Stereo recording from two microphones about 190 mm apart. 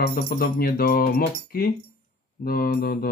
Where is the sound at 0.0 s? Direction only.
55° left (ahead or behind).